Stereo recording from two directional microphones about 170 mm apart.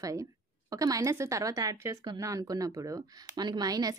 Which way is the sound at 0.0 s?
20° right (ahead or behind).